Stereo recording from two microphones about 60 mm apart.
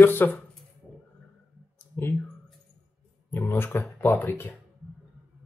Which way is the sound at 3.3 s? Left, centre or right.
Left.